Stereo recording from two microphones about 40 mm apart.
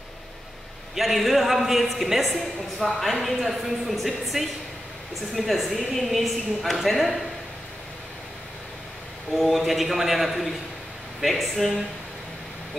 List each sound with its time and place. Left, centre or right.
0.9 s a woman's voice: centre
9.3 s a woman's voice: centre